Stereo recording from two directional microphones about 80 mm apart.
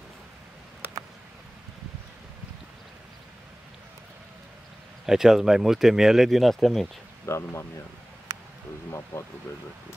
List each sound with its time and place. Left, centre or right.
5.0 s speech: centre
7.2 s speech: left